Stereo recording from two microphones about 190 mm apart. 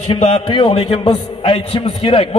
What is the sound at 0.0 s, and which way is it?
A man's voice, 35° left (ahead or behind).